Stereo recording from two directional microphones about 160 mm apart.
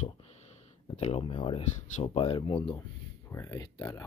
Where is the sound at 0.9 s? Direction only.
40° left (ahead or behind).